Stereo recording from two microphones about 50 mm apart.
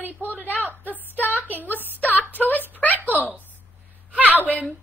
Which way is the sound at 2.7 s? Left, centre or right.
Left.